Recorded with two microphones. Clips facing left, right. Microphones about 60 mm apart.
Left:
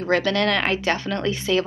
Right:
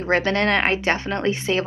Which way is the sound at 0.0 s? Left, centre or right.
Right.